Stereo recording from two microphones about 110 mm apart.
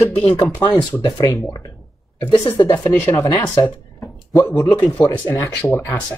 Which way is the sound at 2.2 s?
50° left (ahead or behind).